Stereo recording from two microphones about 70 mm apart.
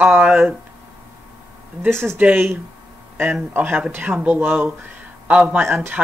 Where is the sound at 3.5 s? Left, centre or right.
Right.